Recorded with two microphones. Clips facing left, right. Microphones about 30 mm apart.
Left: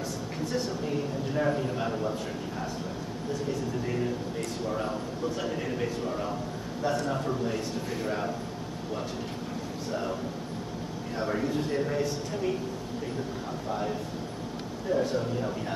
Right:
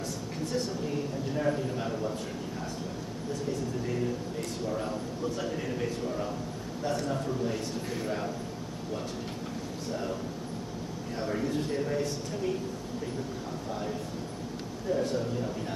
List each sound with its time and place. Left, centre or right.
0.5 s a sound: centre
3.8 s a man's voice: centre
11.1 s speech: centre
13.7 s speech: centre